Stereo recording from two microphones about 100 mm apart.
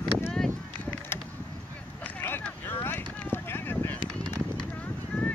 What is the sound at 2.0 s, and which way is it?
Vehicle, 20° left (ahead or behind).